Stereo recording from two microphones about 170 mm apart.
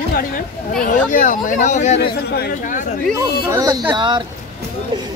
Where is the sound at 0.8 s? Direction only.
50° left (ahead or behind).